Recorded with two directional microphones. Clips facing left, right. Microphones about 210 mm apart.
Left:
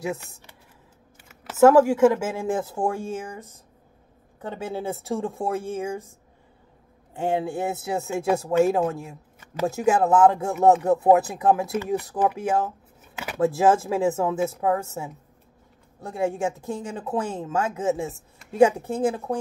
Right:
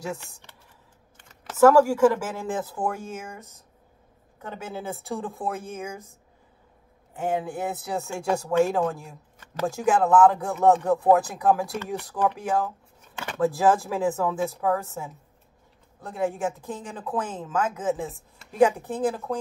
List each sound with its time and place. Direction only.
1.6 s speech: 20° left (ahead or behind)
7.2 s speech: 25° left (ahead or behind)
11.7 s speech: 5° left (ahead or behind)
12.4 s speech: 25° left (ahead or behind)
13.1 s a sound: 10° left (ahead or behind)
13.4 s speech: 25° left (ahead or behind)
16.1 s speech: 25° left (ahead or behind)